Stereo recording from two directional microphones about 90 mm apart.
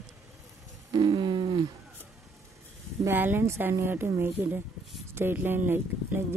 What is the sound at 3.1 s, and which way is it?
Speech, 25° right (ahead or behind).